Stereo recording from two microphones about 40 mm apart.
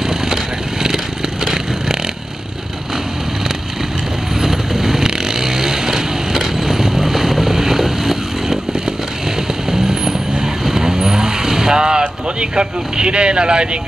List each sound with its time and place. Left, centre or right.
0.8 s vehicle: centre
4.4 s vehicle: centre
12.0 s speech: right